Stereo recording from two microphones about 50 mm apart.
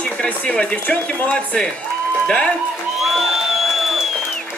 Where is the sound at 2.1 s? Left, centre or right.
Centre.